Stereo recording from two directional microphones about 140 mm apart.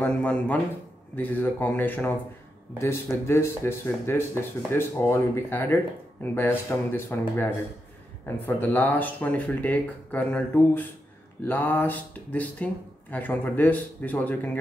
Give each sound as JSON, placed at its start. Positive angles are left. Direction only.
{"t": 0.0, "sound": "speech", "side_deg": 10}